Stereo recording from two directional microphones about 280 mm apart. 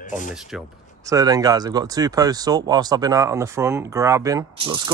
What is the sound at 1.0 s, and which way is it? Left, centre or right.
Speech, centre.